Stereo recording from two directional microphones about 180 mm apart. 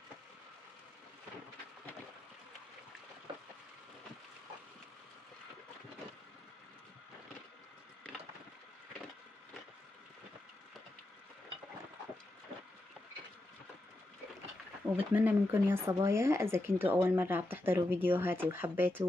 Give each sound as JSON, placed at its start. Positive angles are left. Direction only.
{"t": 15.0, "sound": "speech", "side_deg": -10}